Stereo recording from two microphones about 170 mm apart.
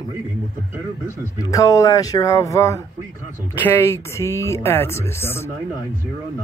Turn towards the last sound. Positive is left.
turn(degrees=15)  # may be behind; listen again after turning